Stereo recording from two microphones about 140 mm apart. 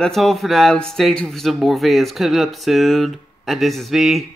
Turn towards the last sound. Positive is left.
turn(degrees=0)  # may be behind; listen again after turning